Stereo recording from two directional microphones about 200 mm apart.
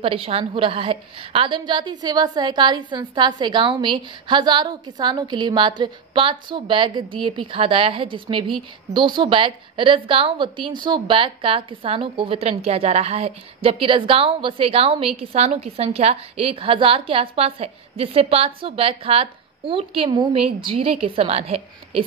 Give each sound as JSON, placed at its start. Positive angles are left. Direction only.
{"t": 0.0, "sound": "a woman's voice", "side_deg": -25}